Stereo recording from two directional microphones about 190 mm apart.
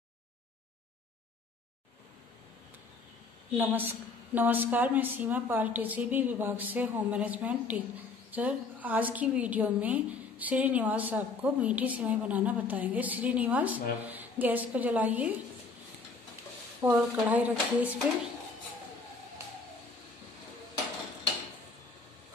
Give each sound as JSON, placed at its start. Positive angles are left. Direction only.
{"t": 3.5, "sound": "a woman's voice", "side_deg": -10}
{"t": 16.8, "sound": "a woman's voice", "side_deg": -10}